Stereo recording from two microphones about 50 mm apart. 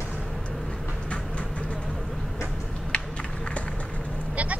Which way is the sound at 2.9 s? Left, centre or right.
Left.